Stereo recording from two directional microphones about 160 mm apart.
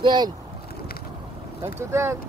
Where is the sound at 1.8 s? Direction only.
15° right (ahead or behind).